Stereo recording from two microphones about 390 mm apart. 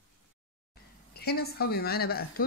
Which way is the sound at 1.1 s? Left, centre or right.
Left.